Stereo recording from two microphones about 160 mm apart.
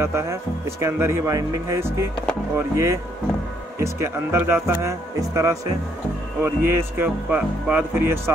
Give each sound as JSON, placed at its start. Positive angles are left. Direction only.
{"t": 0.0, "sound": "speech", "side_deg": -15}